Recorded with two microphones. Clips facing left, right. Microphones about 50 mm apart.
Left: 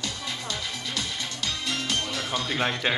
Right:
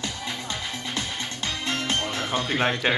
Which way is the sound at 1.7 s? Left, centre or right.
Right.